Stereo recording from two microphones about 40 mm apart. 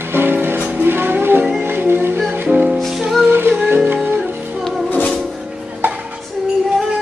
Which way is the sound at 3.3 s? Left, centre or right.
Right.